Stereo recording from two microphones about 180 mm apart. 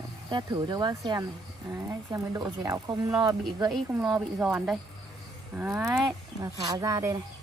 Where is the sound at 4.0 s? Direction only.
5° right (ahead or behind).